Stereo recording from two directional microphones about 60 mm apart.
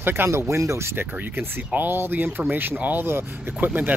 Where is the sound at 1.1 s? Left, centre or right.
Right.